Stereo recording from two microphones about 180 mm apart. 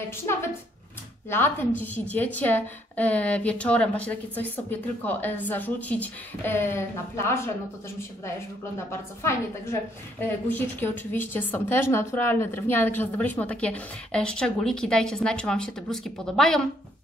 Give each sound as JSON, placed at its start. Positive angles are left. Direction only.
{"t": 0.1, "sound": "a woman's voice", "side_deg": 15}
{"t": 8.7, "sound": "a woman's voice", "side_deg": 15}